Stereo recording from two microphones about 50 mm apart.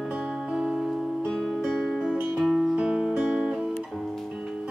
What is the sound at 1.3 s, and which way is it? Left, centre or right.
Music, centre.